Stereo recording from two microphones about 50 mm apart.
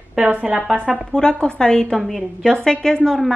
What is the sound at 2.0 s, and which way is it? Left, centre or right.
A woman's voice, centre.